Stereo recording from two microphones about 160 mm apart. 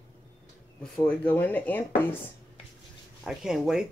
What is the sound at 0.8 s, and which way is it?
Speech, 10° left (ahead or behind).